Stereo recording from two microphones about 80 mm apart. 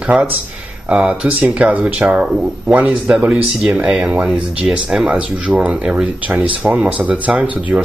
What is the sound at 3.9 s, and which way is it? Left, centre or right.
Speech, centre.